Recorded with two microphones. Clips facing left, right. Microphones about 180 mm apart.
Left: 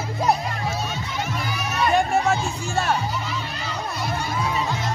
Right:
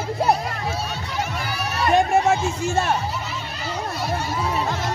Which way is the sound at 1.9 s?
20° right (ahead or behind).